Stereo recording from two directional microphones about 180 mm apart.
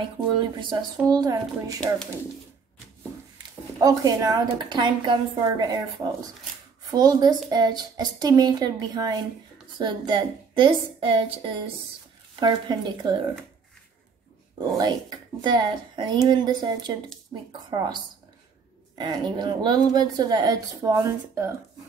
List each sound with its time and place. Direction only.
0.4 s a woman's voice: 25° right (ahead or behind)
3.8 s a woman's voice: 20° right (ahead or behind)
14.8 s a woman's voice: 20° right (ahead or behind)
18.9 s a woman's voice: 25° right (ahead or behind)